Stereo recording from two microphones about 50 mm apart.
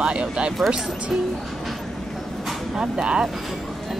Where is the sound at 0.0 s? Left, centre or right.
Right.